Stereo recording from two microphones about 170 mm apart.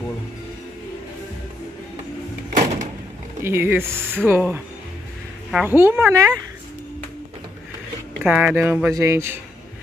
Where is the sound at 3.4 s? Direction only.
15° right (ahead or behind).